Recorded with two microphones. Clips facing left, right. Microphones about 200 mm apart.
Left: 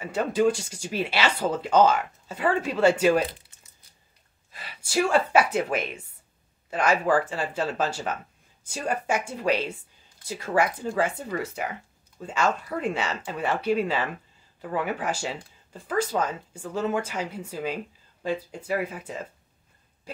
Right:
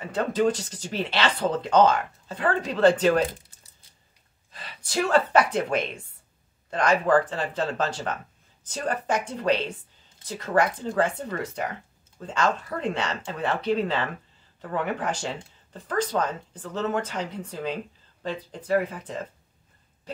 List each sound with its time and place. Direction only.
0.0 s speech: 10° left (ahead or behind)
3.3 s crumpling: 35° right (ahead or behind)
4.5 s speech: 10° left (ahead or behind)